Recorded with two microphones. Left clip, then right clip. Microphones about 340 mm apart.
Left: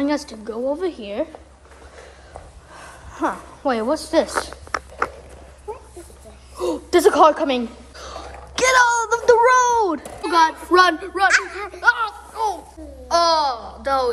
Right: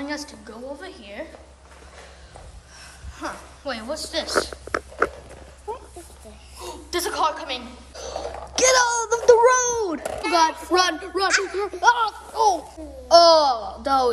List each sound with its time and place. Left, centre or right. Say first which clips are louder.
0.0 s a woman's voice: left 8 dB; centre
2.8 s a sound: left 9 dB; centre
6.9 s a woman's voice: left 10 dB; centre
11.2 s speech: left 5 dB; centre
11.6 s a man's voice: even; centre